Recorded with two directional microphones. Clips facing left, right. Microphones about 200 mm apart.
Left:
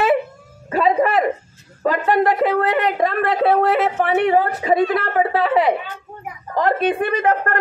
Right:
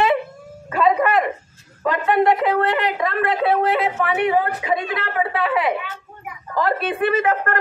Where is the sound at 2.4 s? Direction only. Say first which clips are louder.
Left 2 dB; 45° left (ahead or behind).